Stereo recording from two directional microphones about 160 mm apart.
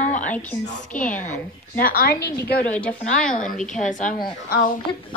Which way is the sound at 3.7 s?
50° left (ahead or behind).